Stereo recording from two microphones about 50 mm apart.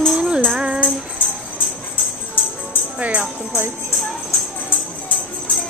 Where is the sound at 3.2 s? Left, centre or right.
Right.